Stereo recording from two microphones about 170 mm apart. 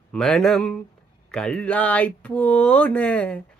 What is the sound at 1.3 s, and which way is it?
Speech, 5° left (ahead or behind).